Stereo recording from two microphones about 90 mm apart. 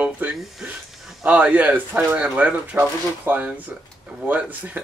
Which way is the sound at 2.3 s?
15° right (ahead or behind).